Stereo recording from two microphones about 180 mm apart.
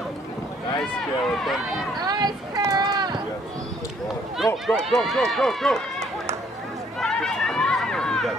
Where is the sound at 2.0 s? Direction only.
25° right (ahead or behind).